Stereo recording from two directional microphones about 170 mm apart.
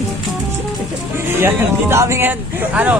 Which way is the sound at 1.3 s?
15° right (ahead or behind).